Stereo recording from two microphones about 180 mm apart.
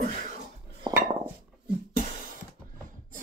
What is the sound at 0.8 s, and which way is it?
Dishes, 25° right (ahead or behind).